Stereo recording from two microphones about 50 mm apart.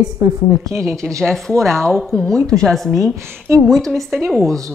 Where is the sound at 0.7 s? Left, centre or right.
Right.